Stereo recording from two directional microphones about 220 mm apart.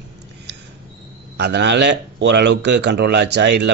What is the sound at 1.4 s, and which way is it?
Speech, 50° right (ahead or behind).